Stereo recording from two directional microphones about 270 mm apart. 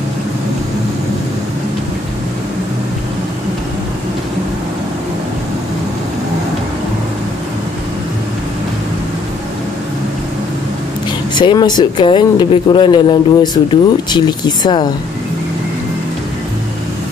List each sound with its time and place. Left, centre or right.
11.3 s speech: centre